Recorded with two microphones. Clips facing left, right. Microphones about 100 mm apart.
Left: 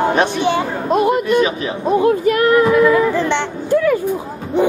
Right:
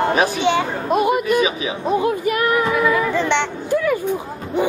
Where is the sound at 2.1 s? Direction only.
5° right (ahead or behind).